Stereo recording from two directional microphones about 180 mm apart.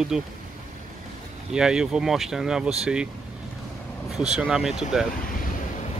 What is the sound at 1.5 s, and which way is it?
Speech, 5° right (ahead or behind).